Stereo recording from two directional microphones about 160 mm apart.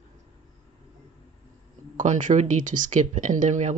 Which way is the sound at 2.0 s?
55° right (ahead or behind).